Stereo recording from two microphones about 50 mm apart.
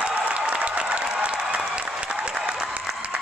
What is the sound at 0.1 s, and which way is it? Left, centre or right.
Applause, right.